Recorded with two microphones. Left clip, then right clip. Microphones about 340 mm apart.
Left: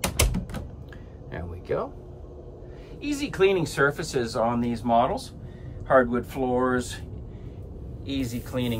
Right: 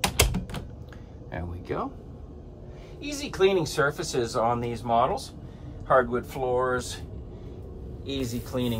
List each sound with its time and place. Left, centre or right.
0.2 s typewriter: centre
1.3 s a sound: right
3.0 s speech: centre
8.0 s speech: centre